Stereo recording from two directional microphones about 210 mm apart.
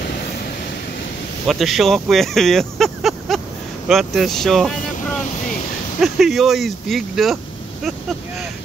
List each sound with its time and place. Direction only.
1.5 s speech: centre (ahead or behind)